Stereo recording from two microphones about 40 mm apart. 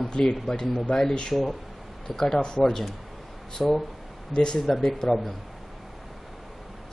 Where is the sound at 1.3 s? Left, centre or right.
Centre.